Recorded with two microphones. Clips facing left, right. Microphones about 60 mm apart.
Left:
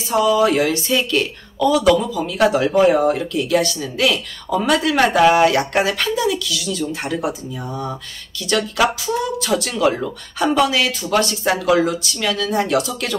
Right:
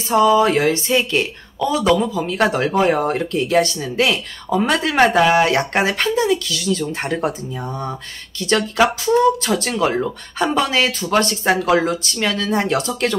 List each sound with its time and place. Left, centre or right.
0.1 s speech: right